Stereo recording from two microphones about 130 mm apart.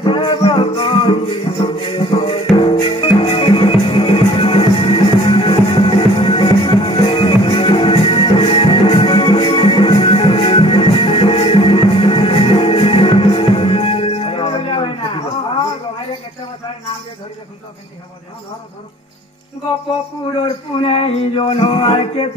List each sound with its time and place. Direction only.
0.0 s music: 35° left (ahead or behind)
1.4 s music: 55° left (ahead or behind)
2.0 s music: 40° left (ahead or behind)
15.1 s a sound: 50° left (ahead or behind)
20.4 s male singing: 45° left (ahead or behind)